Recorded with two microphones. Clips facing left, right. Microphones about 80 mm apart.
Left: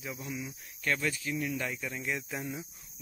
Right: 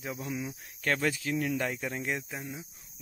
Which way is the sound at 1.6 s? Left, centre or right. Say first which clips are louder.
Right 3 dB; right.